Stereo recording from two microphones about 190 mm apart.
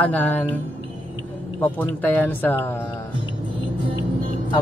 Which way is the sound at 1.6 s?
10° left (ahead or behind).